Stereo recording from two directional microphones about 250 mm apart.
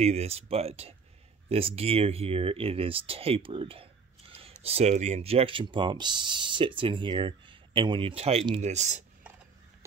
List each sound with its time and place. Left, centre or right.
0.0 s speech: right